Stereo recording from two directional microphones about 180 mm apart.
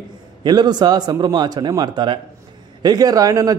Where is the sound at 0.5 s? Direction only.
25° right (ahead or behind).